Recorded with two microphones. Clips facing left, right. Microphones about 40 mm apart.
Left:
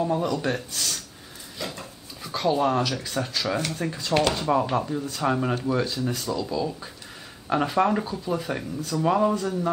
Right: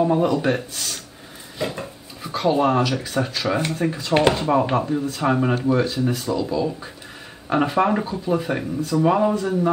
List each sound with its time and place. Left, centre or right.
0.0 s speech: right